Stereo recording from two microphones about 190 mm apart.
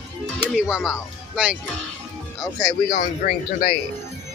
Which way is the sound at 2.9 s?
45° left (ahead or behind).